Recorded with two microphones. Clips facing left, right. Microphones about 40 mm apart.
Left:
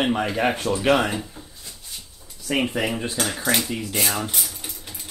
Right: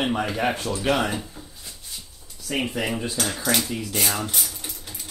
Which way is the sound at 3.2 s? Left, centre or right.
Centre.